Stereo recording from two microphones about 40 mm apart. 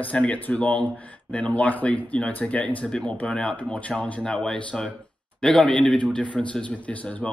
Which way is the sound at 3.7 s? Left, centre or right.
Left.